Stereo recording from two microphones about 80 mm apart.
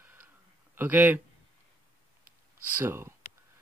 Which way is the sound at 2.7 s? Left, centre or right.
Right.